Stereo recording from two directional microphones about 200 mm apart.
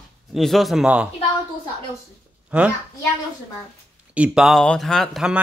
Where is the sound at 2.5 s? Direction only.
5° right (ahead or behind).